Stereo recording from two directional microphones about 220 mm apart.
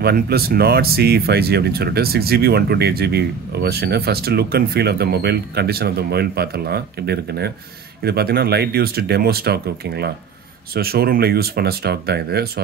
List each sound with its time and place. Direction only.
0.0 s speech: 45° right (ahead or behind)